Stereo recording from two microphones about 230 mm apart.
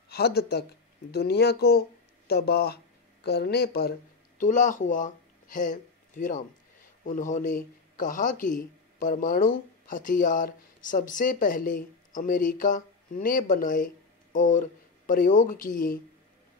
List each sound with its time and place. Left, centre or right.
0.1 s speech: left